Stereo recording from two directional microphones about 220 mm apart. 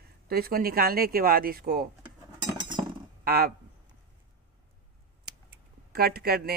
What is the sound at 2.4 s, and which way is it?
Cutlery, 20° right (ahead or behind).